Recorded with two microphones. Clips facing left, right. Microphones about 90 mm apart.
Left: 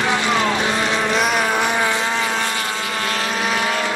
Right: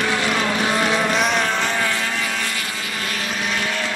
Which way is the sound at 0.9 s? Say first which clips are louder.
Left 1 dB; 5° left (ahead or behind).